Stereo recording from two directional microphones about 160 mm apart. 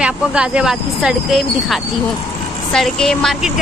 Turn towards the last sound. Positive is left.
turn(degrees=0)  # may be behind; listen again after turning